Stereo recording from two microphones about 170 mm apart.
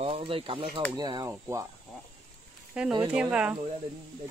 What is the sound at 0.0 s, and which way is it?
Speech, 35° right (ahead or behind).